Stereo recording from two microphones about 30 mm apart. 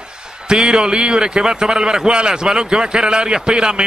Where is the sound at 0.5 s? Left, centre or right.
Right.